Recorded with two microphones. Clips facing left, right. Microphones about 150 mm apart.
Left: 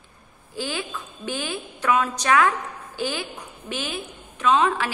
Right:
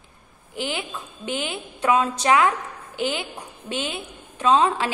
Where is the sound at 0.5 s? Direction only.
20° right (ahead or behind).